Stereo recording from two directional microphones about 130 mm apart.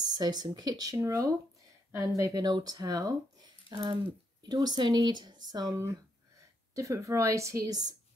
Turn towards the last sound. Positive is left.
turn(degrees=-30)  # may be behind; listen again after turning